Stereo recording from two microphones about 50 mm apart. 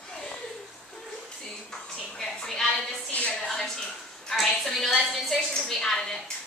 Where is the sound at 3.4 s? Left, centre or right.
Centre.